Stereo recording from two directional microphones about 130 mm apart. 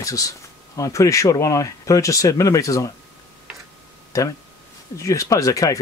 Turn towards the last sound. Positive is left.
turn(degrees=25)  # may be behind; listen again after turning